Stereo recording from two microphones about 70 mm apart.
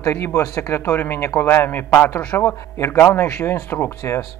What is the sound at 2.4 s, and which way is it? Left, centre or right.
Speech, left.